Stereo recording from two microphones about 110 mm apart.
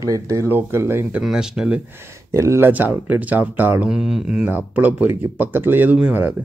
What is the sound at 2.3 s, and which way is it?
Speech, 25° right (ahead or behind).